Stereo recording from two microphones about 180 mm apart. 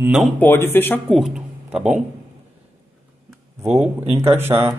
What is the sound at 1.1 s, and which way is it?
Speech, centre (ahead or behind).